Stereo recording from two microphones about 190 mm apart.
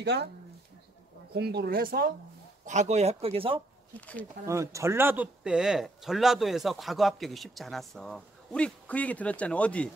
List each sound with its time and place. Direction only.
0.0 s speech: 60° right (ahead or behind)
1.3 s speech: 60° right (ahead or behind)
2.6 s speech: 40° right (ahead or behind)
4.5 s speech: 15° right (ahead or behind); by 9.8 s 5° left (ahead or behind)